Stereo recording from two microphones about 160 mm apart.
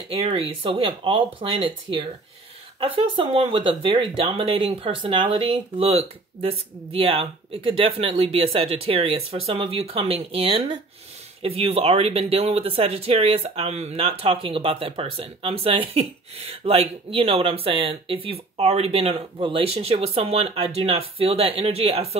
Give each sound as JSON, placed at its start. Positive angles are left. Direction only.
{"t": 0.1, "sound": "speech", "side_deg": -35}